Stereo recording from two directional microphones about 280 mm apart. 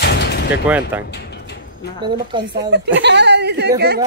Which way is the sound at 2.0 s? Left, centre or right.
Centre.